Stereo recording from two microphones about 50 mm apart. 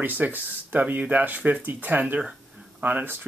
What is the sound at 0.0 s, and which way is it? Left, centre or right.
Speech, right.